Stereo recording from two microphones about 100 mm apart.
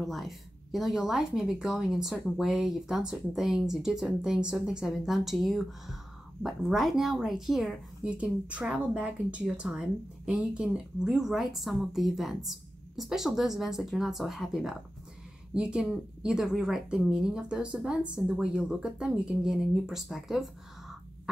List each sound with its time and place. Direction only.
0.0 s a woman's voice: centre (ahead or behind)